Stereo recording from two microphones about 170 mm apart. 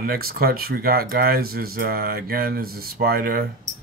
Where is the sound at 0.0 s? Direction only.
60° right (ahead or behind).